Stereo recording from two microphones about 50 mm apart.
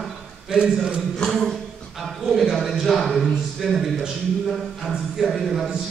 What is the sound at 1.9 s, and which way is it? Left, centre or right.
Speech, centre.